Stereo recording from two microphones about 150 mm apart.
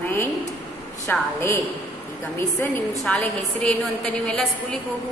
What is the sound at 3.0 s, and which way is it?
A woman's voice, 5° left (ahead or behind).